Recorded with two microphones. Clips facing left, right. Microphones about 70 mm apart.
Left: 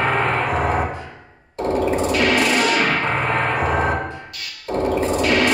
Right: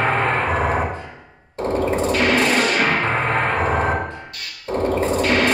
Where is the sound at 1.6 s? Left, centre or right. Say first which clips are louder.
Left 1 dB; right.